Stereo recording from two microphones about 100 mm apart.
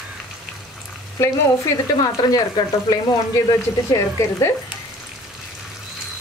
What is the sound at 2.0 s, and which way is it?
Speech, 40° left (ahead or behind).